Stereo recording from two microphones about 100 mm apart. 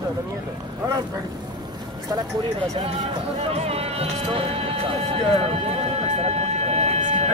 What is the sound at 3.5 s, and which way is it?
Speech, 90° right.